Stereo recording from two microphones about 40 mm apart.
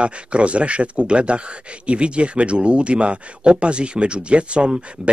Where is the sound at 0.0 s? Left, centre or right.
Right.